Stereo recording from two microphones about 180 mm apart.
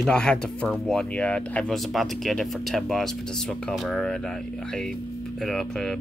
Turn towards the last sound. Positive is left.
turn(degrees=0)  # may be behind; listen again after turning